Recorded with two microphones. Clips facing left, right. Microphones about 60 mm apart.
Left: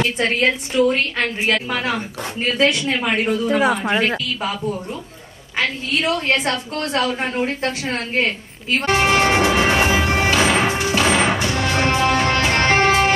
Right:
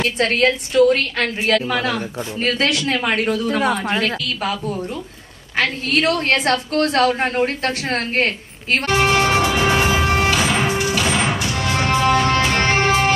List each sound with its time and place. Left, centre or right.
0.2 s a woman's voice: right
3.3 s speech: centre
4.2 s a woman's voice: right
5.6 s a woman's voice: right
8.8 s music: left